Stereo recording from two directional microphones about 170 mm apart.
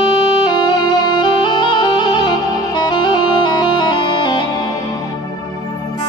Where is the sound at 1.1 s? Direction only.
25° left (ahead or behind).